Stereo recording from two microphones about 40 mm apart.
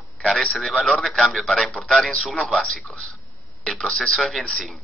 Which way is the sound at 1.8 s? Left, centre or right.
Left.